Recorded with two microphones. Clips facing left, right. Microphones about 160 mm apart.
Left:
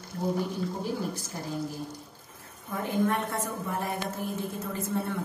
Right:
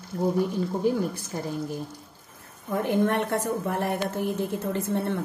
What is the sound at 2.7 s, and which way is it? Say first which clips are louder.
A woman's voice: right 4 dB; 70° right (ahead or behind).